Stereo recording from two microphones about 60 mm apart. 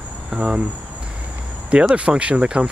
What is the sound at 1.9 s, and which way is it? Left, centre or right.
Speech, centre.